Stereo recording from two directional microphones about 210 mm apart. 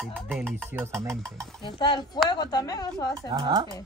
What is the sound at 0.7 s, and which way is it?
Stir, 10° right (ahead or behind).